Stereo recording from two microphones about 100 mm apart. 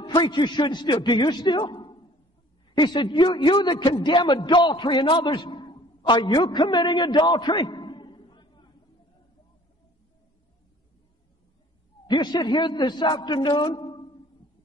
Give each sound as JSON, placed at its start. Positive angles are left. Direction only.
{"t": 0.0, "sound": "a man's voice", "side_deg": 50}
{"t": 12.1, "sound": "a man's voice", "side_deg": 45}